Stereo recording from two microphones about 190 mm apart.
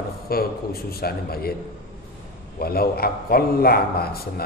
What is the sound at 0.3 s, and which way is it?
A man's voice, 55° left (ahead or behind).